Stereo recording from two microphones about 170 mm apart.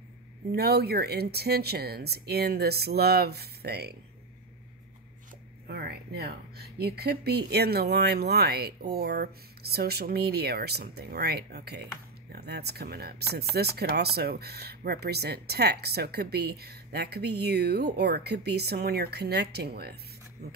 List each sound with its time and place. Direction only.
0.5 s speech: 70° right (ahead or behind)
5.7 s speech: 70° right (ahead or behind)